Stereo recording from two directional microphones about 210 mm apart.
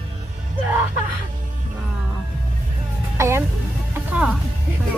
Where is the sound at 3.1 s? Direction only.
10° right (ahead or behind).